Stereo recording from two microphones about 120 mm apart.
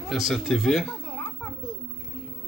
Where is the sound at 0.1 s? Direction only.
Centre (ahead or behind).